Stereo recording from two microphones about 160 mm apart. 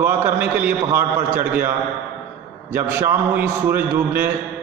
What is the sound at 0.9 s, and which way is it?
A man's voice, 15° right (ahead or behind).